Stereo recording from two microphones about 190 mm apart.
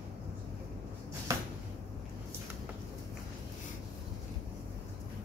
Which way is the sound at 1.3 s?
15° right (ahead or behind).